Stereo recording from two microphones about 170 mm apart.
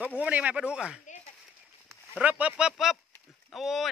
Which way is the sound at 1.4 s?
5° right (ahead or behind).